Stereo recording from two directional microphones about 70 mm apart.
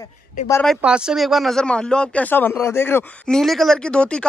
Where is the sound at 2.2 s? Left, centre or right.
Left.